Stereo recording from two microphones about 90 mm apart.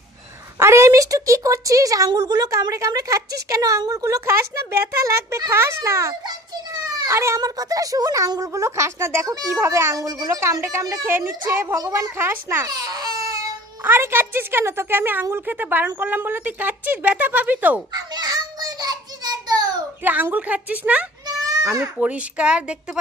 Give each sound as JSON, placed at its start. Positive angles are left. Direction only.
{"t": 0.6, "sound": "a woman's voice", "side_deg": -30}
{"t": 6.2, "sound": "children playing", "side_deg": -45}
{"t": 7.2, "sound": "a woman's voice", "side_deg": -35}
{"t": 10.0, "sound": "speech", "side_deg": -45}
{"t": 10.4, "sound": "a woman's voice", "side_deg": -30}
{"t": 11.1, "sound": "speech", "side_deg": -25}
{"t": 12.6, "sound": "baby cry", "side_deg": -45}
{"t": 13.8, "sound": "speech", "side_deg": -25}
{"t": 17.9, "sound": "a sound", "side_deg": -45}
{"t": 20.0, "sound": "a woman's voice", "side_deg": -20}